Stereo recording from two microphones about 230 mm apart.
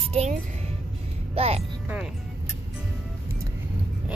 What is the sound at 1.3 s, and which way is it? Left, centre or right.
Speech, right.